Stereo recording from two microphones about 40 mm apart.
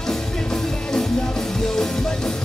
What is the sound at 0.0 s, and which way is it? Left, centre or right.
Music, centre.